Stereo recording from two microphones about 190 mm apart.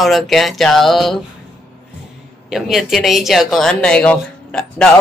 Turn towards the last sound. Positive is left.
turn(degrees=5)  # may be behind; listen again after turning